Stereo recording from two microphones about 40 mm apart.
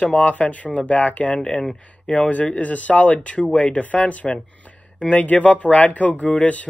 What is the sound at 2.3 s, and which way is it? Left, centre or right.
Speech, left.